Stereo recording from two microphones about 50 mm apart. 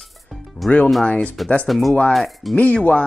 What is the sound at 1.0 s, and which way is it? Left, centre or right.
Speech, left.